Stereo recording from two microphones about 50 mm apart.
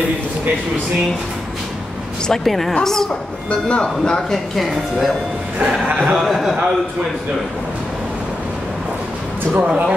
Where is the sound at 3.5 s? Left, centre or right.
Centre.